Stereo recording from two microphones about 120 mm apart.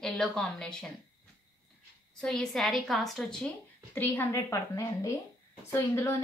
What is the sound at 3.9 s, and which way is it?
A woman's voice, 15° left (ahead or behind).